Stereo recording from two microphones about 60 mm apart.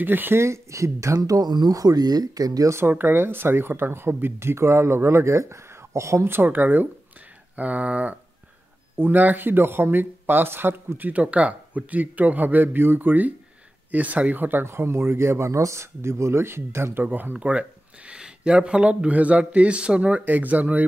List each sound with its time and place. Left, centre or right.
0.0 s speech: right
0.4 s speech: right
2.9 s speech: right
6.2 s speech: right
8.9 s speech: right